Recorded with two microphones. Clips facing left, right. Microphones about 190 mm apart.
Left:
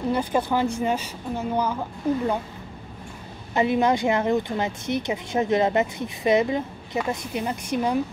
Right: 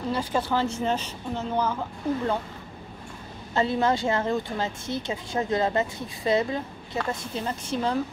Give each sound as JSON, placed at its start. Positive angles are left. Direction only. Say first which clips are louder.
{"t": 0.1, "sound": "a woman's voice", "louder": "left 2 dB", "side_deg": 15}
{"t": 3.5, "sound": "a woman's voice", "louder": "left 3 dB", "side_deg": 15}